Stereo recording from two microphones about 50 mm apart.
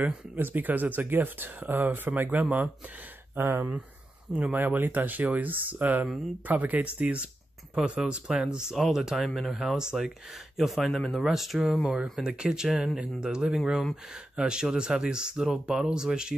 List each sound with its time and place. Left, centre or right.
0.4 s speech: right
3.3 s speech: right
4.3 s speech: right; by 9.6 s centre
9.6 s speech: centre